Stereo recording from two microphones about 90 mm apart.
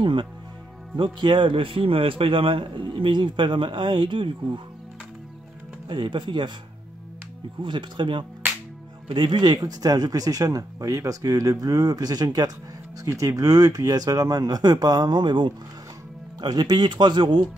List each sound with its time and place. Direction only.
0.0 s a man's voice: 65° right (ahead or behind)
5.9 s a man's voice: 65° right (ahead or behind)
7.6 s a man's voice: 60° right (ahead or behind)
13.0 s speech: 35° right (ahead or behind); by 17.5 s 60° right (ahead or behind)